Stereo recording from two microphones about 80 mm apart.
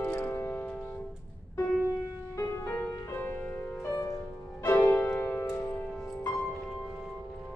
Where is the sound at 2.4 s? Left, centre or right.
Left.